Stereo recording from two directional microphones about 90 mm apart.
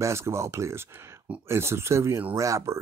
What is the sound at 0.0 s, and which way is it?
Speech, 30° right (ahead or behind).